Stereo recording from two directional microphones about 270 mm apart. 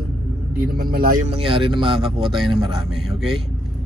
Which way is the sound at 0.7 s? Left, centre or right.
Right.